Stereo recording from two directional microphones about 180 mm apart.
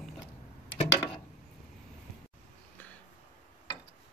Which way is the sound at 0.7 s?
30° left (ahead or behind).